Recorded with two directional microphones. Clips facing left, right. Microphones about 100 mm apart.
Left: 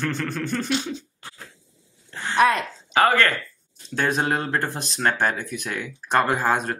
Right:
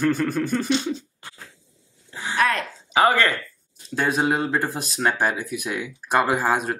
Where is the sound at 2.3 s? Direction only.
20° left (ahead or behind).